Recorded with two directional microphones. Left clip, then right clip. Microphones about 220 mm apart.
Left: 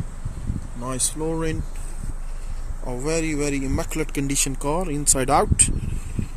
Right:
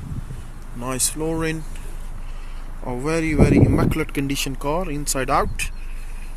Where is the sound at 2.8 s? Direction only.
10° right (ahead or behind).